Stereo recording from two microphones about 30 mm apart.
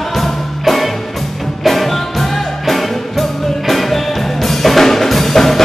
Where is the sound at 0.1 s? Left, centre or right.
Centre.